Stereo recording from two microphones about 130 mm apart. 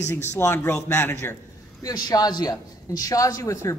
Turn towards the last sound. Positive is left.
turn(degrees=25)  # may be behind; listen again after turning